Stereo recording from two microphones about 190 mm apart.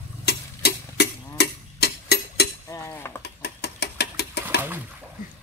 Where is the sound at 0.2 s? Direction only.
60° left (ahead or behind).